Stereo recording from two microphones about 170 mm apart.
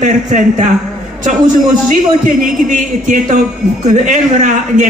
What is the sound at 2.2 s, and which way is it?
A man's voice, 50° right (ahead or behind).